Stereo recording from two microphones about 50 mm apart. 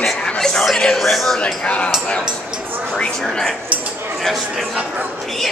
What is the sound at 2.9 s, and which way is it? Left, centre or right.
Speech, centre.